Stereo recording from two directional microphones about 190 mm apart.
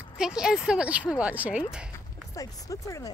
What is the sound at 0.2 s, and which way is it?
Speech, 5° right (ahead or behind).